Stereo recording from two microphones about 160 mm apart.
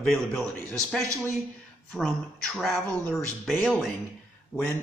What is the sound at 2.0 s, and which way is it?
Speech, 5° left (ahead or behind).